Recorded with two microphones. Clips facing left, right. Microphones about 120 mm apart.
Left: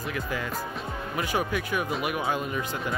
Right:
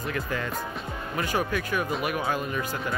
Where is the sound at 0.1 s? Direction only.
10° left (ahead or behind).